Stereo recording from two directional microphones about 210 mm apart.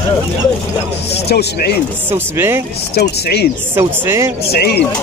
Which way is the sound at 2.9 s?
50° left (ahead or behind).